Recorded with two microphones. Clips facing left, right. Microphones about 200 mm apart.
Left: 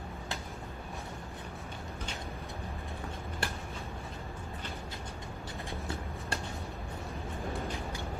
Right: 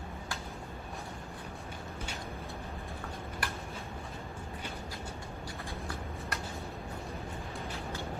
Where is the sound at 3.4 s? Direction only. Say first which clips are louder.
Left 2 dB; 25° left (ahead or behind).